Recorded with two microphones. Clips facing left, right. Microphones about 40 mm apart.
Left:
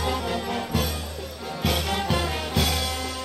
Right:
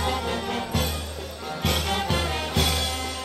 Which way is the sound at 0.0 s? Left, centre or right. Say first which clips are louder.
Even; centre.